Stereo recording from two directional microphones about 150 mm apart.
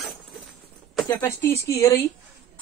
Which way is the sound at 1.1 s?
20° left (ahead or behind).